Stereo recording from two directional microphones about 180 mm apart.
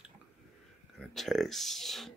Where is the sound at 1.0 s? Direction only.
Centre (ahead or behind).